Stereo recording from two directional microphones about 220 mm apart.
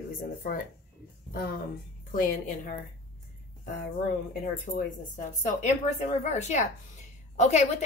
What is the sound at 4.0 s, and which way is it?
A woman's voice, 40° left (ahead or behind).